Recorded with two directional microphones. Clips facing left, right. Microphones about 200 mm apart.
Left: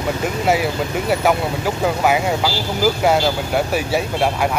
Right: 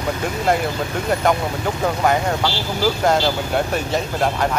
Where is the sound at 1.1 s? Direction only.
5° left (ahead or behind).